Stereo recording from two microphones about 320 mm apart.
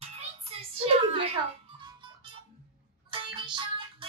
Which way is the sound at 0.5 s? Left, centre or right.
Centre.